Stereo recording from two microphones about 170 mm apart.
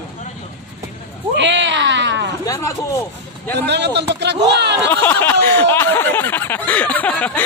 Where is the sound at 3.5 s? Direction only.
85° right.